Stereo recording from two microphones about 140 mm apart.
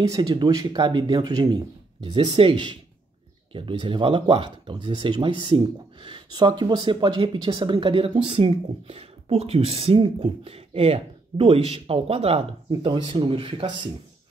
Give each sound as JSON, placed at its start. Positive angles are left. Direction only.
{"t": 0.0, "sound": "speech", "side_deg": -25}
{"t": 2.0, "sound": "speech", "side_deg": -40}